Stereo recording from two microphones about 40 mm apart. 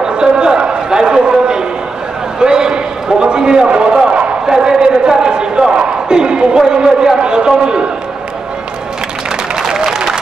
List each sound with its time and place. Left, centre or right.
0.0 s a sound: centre
2.4 s a man's voice: centre
9.6 s applause: centre